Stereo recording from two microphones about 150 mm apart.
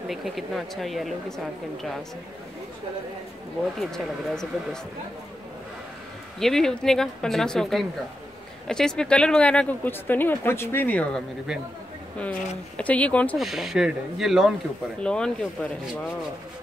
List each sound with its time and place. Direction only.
0.1 s speech: centre (ahead or behind)
3.8 s speech: centre (ahead or behind)
6.4 s speech: 5° left (ahead or behind)
13.4 s speech: centre (ahead or behind)